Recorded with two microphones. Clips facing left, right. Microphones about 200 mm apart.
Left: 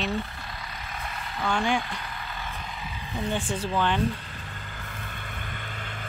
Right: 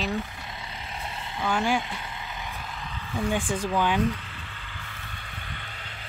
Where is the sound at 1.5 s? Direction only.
5° right (ahead or behind).